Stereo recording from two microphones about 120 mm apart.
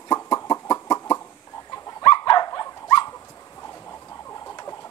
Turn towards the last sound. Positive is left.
turn(degrees=30)  # may be behind; listen again after turning